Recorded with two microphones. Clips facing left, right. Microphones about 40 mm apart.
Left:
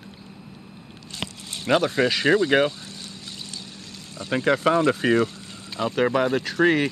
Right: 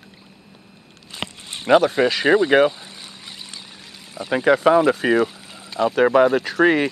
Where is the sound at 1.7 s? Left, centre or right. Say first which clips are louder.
Right 5 dB; centre.